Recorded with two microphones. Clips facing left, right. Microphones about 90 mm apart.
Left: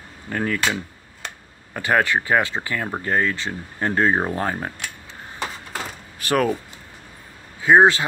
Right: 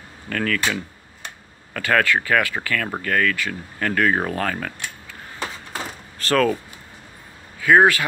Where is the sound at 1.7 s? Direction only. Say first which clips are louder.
Even; 20° left (ahead or behind).